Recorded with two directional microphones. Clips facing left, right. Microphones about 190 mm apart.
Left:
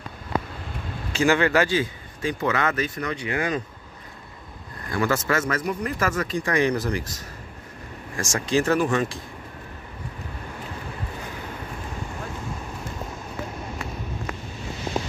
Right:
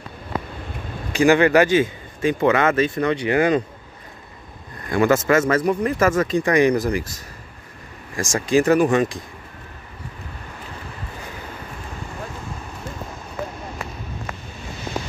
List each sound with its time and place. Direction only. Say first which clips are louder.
1.1 s a man's voice: right 5 dB; 15° right (ahead or behind); by 3.6 s 35° right (ahead or behind)
4.8 s a man's voice: right 7 dB; 20° right (ahead or behind)